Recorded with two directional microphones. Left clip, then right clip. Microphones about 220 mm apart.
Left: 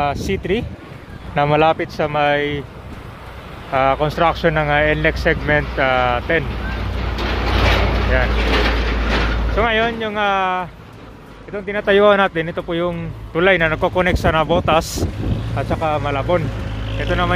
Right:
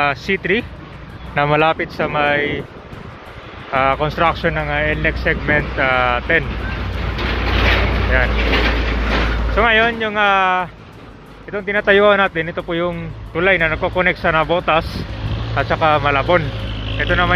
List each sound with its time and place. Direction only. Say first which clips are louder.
0.0 s speech: right 3 dB; 10° left (ahead or behind)
3.7 s speech: even; 20° left (ahead or behind)
7.0 s vehicle: right 1 dB; 55° left (ahead or behind)
9.6 s speech: right 3 dB; 10° left (ahead or behind)
13.3 s speech: even; 25° left (ahead or behind)
15.5 s speech: right 5 dB; 5° left (ahead or behind)
16.7 s vehicle: right 6 dB; 45° right (ahead or behind)